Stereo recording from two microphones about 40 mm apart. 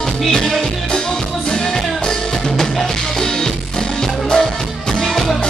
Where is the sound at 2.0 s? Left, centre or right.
Centre.